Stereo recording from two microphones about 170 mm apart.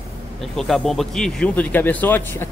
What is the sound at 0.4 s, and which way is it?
Speech, centre (ahead or behind).